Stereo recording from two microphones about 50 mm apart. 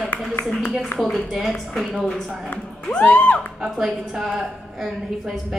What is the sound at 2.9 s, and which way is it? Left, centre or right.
Speech, left.